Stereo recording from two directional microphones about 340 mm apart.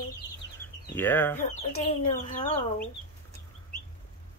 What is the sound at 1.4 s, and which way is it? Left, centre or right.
Speech, centre.